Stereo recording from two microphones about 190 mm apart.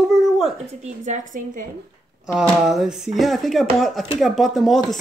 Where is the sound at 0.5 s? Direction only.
35° right (ahead or behind).